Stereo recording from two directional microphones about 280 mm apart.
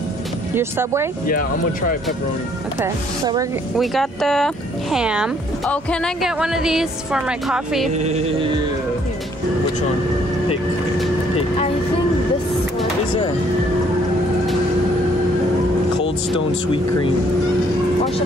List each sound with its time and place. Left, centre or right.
0.6 s speech: centre
1.2 s speech: left
2.8 s speech: centre
3.7 s a woman's voice: centre